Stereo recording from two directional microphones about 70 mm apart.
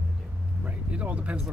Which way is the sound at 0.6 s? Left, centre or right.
Centre.